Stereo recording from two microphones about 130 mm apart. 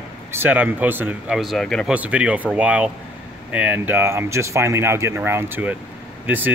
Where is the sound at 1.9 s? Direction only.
10° right (ahead or behind).